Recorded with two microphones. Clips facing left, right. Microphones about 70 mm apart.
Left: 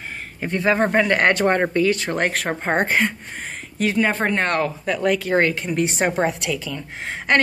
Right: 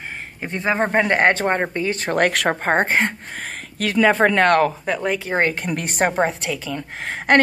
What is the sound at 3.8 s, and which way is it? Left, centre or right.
Speech, right.